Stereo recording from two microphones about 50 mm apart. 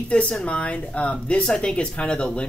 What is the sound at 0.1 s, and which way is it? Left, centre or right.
Speech, centre.